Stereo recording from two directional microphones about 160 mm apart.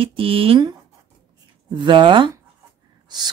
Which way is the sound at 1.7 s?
30° right (ahead or behind).